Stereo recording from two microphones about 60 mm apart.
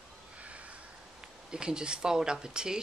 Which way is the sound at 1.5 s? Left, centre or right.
Centre.